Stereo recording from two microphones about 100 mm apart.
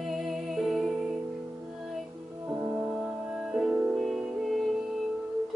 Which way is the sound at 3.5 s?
5° right (ahead or behind).